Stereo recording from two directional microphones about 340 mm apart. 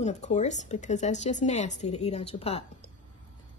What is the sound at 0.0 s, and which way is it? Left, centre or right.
Speech, centre.